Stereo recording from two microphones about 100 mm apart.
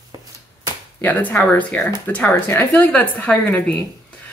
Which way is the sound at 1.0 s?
15° left (ahead or behind).